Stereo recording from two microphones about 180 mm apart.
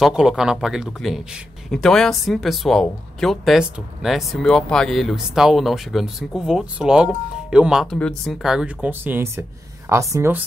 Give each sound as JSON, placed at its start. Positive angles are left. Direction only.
{"t": 0.0, "sound": "a man's voice", "side_deg": -5}